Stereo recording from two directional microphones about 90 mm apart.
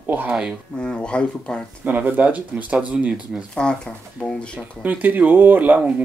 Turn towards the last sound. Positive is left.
turn(degrees=-20)  # may be behind; listen again after turning